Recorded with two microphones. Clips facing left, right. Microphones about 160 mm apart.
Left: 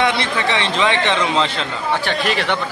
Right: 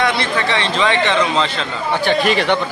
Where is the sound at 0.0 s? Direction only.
20° left (ahead or behind).